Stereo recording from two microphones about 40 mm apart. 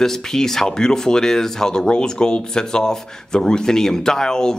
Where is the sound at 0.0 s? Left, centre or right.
Centre.